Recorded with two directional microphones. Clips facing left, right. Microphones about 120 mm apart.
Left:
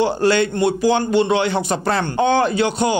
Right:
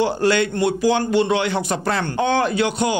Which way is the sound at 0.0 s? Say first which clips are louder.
Left 2 dB; 30° left (ahead or behind).